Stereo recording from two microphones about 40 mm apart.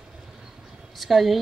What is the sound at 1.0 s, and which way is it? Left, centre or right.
Speech, centre.